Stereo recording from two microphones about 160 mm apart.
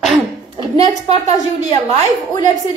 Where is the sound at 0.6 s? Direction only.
35° right (ahead or behind).